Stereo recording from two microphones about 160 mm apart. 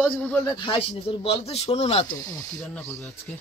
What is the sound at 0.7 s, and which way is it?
Speech, 35° left (ahead or behind).